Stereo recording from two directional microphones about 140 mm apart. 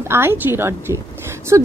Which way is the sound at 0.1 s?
15° right (ahead or behind).